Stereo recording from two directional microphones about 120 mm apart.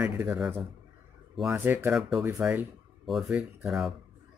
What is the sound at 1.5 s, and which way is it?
Speech, 20° right (ahead or behind).